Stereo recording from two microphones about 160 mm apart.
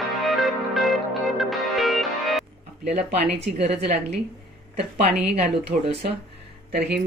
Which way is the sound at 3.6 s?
40° right (ahead or behind).